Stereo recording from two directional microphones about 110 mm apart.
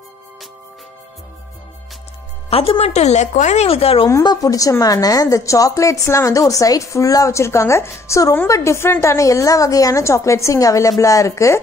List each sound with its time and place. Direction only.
2.5 s speech: 60° left (ahead or behind)
4.1 s a woman's voice: 35° left (ahead or behind)